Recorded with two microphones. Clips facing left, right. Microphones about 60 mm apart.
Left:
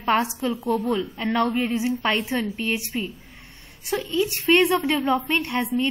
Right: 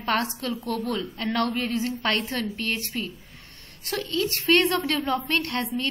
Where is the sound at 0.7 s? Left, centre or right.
Centre.